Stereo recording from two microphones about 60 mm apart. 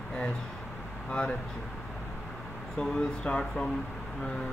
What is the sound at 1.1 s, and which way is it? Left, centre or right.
Speech, centre.